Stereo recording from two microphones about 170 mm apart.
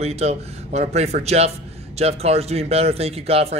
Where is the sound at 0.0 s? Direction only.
40° right (ahead or behind).